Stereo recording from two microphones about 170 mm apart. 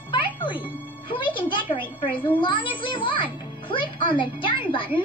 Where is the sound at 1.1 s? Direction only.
30° left (ahead or behind).